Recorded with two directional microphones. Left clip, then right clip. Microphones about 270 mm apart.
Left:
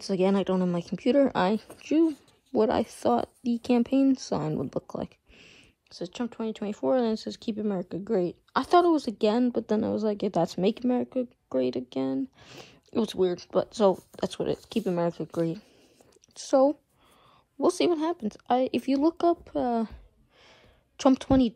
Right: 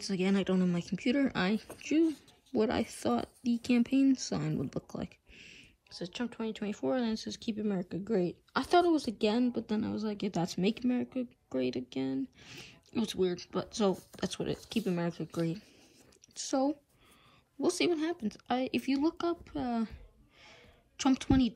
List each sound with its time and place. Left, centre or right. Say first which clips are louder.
0.0 s speech: left 7 dB; centre
16.3 s speech: left 10 dB; centre